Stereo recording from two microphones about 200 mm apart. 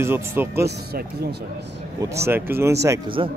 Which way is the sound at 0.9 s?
50° right (ahead or behind).